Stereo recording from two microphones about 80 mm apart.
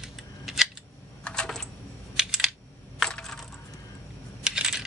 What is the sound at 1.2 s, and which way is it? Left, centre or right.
Typing, centre.